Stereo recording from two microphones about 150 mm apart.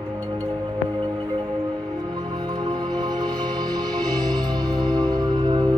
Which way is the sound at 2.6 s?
25° right (ahead or behind).